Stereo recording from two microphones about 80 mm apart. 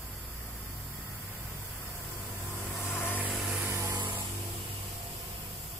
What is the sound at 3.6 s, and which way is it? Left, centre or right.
Vehicle, right.